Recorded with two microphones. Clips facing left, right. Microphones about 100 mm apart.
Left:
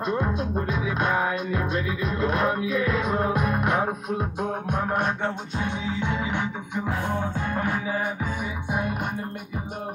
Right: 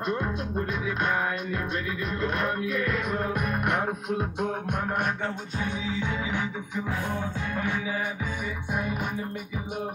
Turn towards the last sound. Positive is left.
turn(degrees=35)  # may be behind; listen again after turning